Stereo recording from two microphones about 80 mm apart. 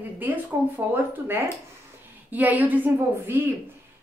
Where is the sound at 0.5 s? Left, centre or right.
Right.